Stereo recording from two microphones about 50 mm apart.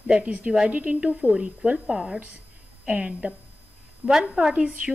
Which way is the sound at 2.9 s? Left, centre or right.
Right.